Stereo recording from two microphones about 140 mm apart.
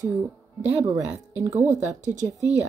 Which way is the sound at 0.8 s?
25° right (ahead or behind).